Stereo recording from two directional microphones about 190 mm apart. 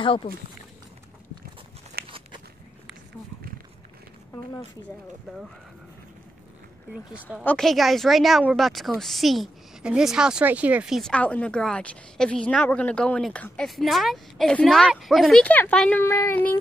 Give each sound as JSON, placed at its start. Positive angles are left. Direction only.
{"t": 0.0, "sound": "speech", "side_deg": 25}
{"t": 2.0, "sound": "biting", "side_deg": -25}
{"t": 6.9, "sound": "speech", "side_deg": -5}